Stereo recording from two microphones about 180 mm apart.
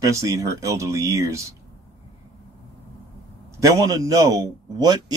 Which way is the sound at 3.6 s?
20° right (ahead or behind).